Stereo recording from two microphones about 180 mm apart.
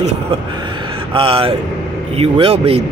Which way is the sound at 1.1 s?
30° right (ahead or behind).